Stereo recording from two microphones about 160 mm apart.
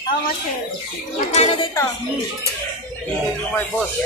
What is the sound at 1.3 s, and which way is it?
Speech, 40° left (ahead or behind).